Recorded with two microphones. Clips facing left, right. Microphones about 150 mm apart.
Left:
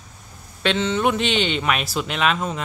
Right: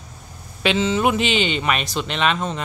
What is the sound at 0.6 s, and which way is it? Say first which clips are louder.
Speech: right 1 dB; 5° right (ahead or behind).